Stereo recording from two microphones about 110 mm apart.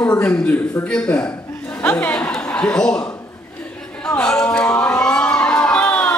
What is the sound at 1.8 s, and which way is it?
Chatter, 15° left (ahead or behind).